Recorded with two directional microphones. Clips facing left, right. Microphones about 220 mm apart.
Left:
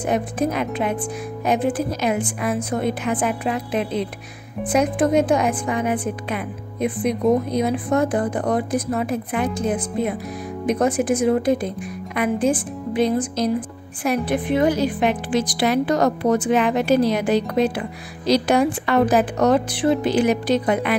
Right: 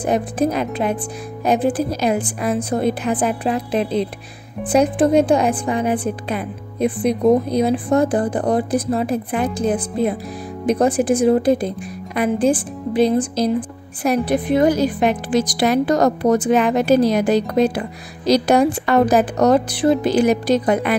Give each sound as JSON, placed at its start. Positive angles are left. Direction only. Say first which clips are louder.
{"t": 0.0, "sound": "a woman's voice", "louder": "right 3 dB", "side_deg": -35}